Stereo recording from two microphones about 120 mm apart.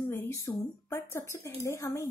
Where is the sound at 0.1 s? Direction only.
25° left (ahead or behind).